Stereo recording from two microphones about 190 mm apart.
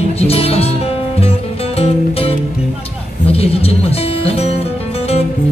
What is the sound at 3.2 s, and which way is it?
Speech, 30° left (ahead or behind).